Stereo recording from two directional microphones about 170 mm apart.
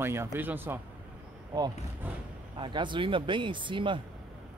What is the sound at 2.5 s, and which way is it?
Speech, 25° right (ahead or behind).